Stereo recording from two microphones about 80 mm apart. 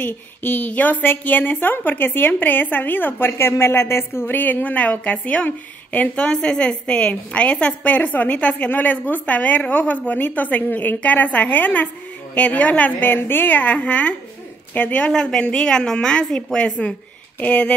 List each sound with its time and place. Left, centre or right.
0.0 s a woman's voice: left